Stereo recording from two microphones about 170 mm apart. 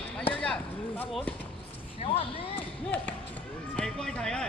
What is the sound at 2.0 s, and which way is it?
Speech, 35° left (ahead or behind).